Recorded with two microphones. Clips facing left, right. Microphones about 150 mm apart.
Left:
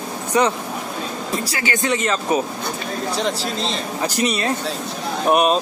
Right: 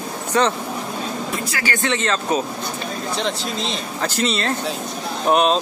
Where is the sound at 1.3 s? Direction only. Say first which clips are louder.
Left 2 dB; 35° left (ahead or behind).